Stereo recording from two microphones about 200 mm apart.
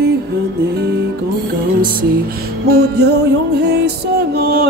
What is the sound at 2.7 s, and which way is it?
Music, 50° right (ahead or behind).